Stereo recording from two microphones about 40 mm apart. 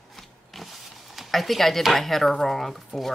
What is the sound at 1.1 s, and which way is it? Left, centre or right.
Speech, centre.